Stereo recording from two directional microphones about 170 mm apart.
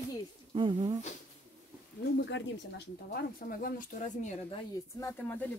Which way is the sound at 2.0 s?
85° left.